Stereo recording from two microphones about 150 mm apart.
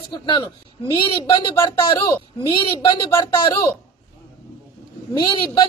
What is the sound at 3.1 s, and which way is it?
Speech, 20° left (ahead or behind).